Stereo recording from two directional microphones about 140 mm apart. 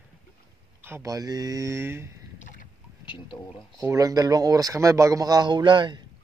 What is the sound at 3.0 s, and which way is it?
Speech, 35° left (ahead or behind).